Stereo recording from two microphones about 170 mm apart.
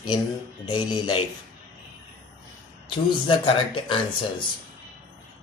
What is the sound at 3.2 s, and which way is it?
Speech, 30° left (ahead or behind).